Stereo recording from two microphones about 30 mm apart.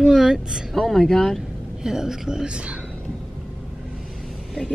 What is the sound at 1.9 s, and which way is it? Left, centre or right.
Speech, centre.